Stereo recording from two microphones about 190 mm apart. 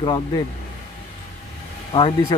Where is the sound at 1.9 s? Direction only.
25° left (ahead or behind).